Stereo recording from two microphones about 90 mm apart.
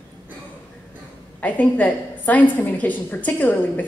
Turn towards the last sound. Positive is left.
turn(degrees=20)  # may be behind; listen again after turning